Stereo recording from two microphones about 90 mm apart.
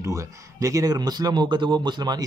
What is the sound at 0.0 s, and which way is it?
Speech, 35° right (ahead or behind).